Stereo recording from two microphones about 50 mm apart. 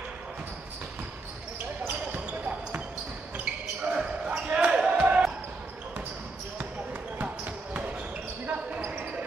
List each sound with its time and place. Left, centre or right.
2.1 s basketball bounce: right
3.3 s basketball bounce: right
7.2 s basketball bounce: right